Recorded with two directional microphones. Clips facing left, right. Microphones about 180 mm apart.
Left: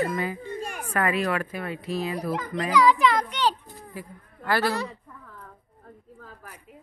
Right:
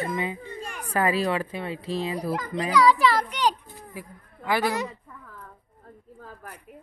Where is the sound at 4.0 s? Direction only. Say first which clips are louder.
Left 1 dB; 15° right (ahead or behind).